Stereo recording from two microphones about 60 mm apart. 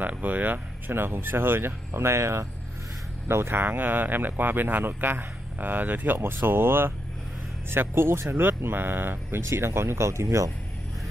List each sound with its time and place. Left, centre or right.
0.0 s speech: right
9.5 s speech: right